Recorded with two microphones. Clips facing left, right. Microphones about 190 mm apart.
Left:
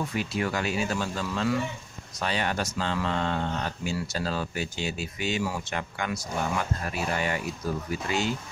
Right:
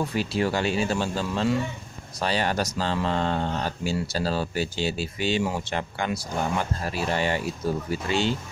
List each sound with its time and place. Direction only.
0.1 s speech: 30° right (ahead or behind)